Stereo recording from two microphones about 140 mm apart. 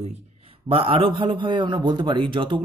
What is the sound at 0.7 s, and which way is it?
A man's voice, 40° right (ahead or behind).